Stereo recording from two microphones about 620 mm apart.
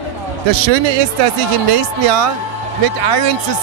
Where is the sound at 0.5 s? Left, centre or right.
Right.